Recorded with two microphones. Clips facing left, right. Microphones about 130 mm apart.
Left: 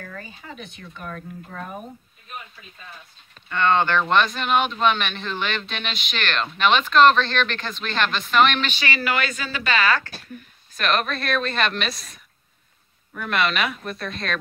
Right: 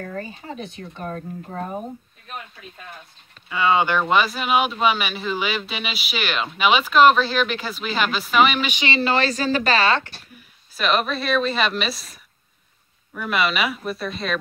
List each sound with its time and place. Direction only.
0.0 s speech: 35° right (ahead or behind)
3.4 s speech: 5° right (ahead or behind)
8.8 s speech: 25° right (ahead or behind)
10.3 s a woman's voice: 5° right (ahead or behind)